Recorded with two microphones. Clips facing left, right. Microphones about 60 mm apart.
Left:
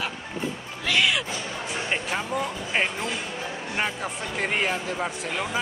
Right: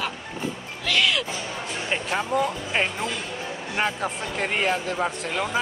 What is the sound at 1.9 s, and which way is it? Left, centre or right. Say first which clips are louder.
Speech: right 4 dB; centre.